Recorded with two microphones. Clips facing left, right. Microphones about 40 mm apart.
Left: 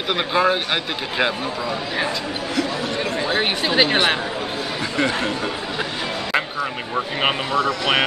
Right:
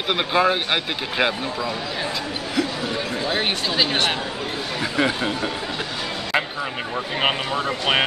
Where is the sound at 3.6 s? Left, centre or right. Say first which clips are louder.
Left 4 dB; left.